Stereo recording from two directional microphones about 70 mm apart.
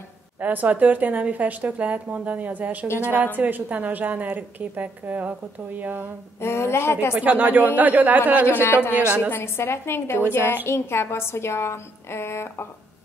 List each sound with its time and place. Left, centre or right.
0.4 s speech: right
6.4 s a woman's voice: left
7.2 s speech: right
8.5 s a woman's voice: left
8.9 s speech: right
9.3 s a woman's voice: left